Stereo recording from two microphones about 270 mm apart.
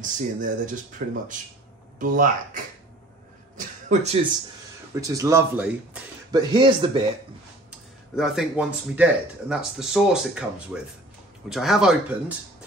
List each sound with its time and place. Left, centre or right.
0.0 s speech: right
3.5 s a sound: right
5.0 s a man's voice: centre
8.2 s speech: centre